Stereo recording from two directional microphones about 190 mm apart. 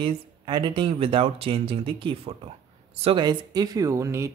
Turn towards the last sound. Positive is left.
turn(degrees=-15)  # may be behind; listen again after turning